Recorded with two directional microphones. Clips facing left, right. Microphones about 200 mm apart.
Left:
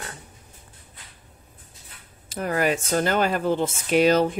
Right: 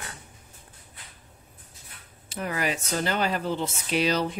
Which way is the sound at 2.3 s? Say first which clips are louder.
Left 6 dB; 45° left (ahead or behind).